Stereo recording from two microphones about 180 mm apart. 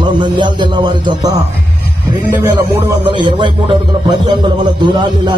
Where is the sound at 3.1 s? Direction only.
25° right (ahead or behind).